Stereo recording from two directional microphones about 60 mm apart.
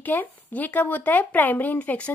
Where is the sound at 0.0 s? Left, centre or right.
Left.